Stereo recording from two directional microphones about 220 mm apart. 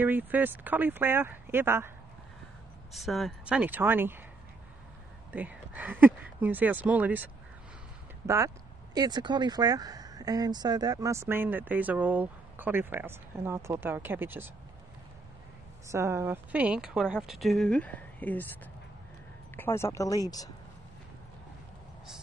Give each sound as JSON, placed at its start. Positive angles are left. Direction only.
{"t": 0.0, "sound": "speech", "side_deg": -10}
{"t": 2.9, "sound": "a woman's voice", "side_deg": 0}
{"t": 5.3, "sound": "speech", "side_deg": -5}
{"t": 8.9, "sound": "speech", "side_deg": -20}
{"t": 15.9, "sound": "a woman's voice", "side_deg": -10}